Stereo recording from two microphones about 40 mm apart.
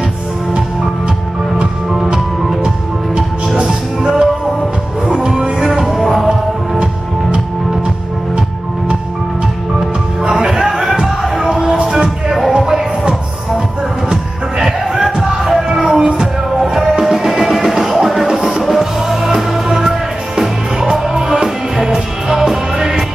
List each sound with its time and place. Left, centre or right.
3.2 s music: centre
10.2 s music: centre
14.0 s music: centre